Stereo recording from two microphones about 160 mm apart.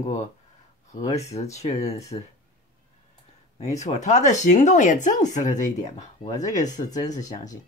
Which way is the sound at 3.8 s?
45° left (ahead or behind).